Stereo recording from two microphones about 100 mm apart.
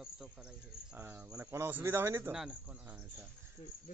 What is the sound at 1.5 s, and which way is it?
Speech, 20° right (ahead or behind).